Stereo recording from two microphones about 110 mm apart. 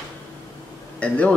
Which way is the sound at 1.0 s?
15° left (ahead or behind).